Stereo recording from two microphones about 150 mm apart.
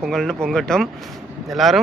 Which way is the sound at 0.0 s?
5° left (ahead or behind).